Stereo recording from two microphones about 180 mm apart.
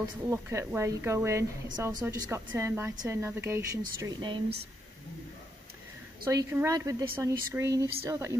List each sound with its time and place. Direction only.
0.3 s a woman's voice: 15° right (ahead or behind)
4.0 s speech: 25° right (ahead or behind)
6.2 s a woman's voice: 15° right (ahead or behind)